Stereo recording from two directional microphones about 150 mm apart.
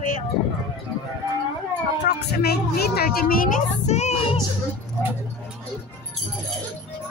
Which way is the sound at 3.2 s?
70° left (ahead or behind).